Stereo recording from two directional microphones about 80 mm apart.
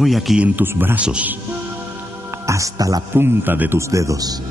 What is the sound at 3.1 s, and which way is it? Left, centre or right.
Speech, right.